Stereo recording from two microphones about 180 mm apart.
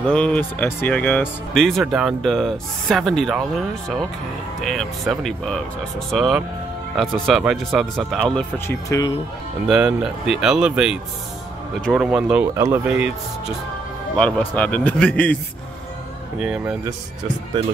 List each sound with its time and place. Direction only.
0.0 s speech: 5° left (ahead or behind)
8.8 s speech: 20° left (ahead or behind)
9.7 s speech: 5° right (ahead or behind)
12.5 s speech: 15° right (ahead or behind)
14.1 s speech: 5° left (ahead or behind)
16.3 s speech: 5° right (ahead or behind)